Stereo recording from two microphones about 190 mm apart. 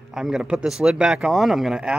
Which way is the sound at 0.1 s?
5° right (ahead or behind).